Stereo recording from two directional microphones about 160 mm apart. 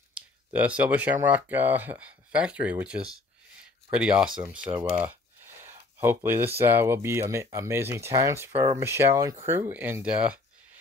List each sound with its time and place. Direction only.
0.1 s speech: 10° right (ahead or behind)
4.9 s a sound: 15° right (ahead or behind)
6.6 s speech: 15° right (ahead or behind)